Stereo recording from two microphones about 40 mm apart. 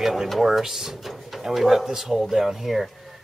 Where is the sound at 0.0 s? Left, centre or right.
Centre.